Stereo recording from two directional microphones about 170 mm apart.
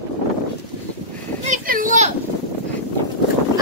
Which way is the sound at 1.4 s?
50° right (ahead or behind).